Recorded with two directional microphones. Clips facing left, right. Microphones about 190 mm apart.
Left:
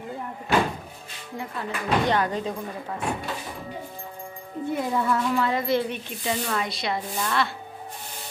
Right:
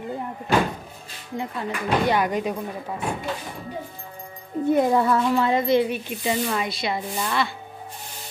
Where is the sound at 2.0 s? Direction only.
10° right (ahead or behind).